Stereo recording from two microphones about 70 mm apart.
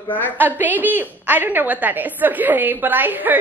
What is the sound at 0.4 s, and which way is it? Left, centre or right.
A woman's voice, right.